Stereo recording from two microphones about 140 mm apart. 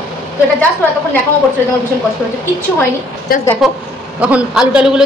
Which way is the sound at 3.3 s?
90° left.